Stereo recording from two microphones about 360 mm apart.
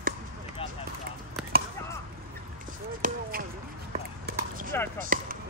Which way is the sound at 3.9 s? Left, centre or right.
Right.